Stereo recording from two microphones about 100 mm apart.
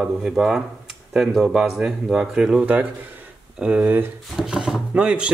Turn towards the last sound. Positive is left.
turn(degrees=-10)  # may be behind; listen again after turning